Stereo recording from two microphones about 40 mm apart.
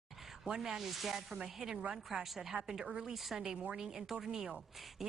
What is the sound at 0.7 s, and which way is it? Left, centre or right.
Speech, centre.